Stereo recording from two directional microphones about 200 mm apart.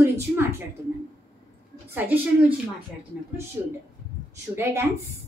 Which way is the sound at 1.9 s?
10° right (ahead or behind).